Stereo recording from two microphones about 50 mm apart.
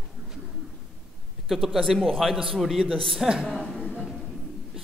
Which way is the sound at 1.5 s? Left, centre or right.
Centre.